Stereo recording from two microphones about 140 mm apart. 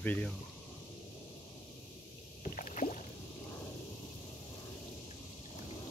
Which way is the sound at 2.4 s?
65° left (ahead or behind).